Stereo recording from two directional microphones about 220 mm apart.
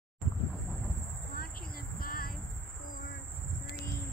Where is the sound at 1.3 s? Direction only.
40° left (ahead or behind).